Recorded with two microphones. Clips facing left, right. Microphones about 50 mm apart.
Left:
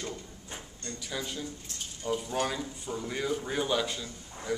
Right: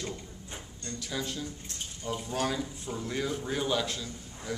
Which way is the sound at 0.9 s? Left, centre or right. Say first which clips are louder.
Right 2 dB; centre.